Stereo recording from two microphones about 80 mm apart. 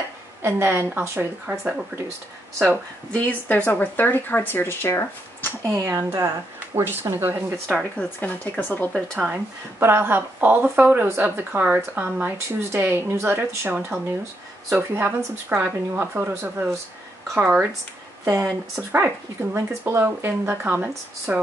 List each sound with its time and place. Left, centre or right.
0.4 s speech: right
1.5 s speech: centre
3.1 s speech: centre
5.7 s speech: right
6.7 s speech: right
7.7 s speech: left
9.2 s speech: right
18.2 s speech: right